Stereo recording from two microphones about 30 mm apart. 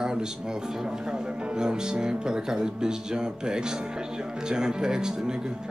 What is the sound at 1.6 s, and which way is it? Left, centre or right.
Music, right.